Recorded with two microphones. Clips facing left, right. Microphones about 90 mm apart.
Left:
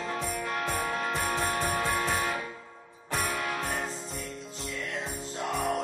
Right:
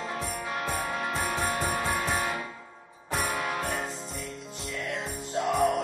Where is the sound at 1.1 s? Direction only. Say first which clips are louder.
Even; 5° right (ahead or behind).